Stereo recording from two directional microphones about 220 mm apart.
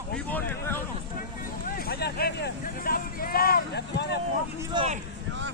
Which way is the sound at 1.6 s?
40° left (ahead or behind).